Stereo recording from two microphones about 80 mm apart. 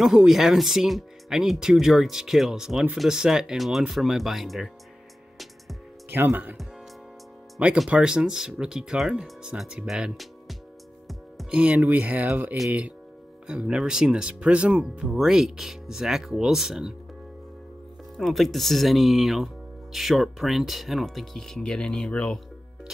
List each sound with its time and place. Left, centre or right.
0.0 s speech: centre
6.0 s speech: right
7.6 s speech: centre
11.5 s speech: centre
11.8 s speech: centre
13.5 s speech: centre
18.1 s speech: centre